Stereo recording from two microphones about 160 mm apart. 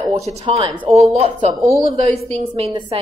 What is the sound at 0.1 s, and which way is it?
A woman's voice, 40° right (ahead or behind).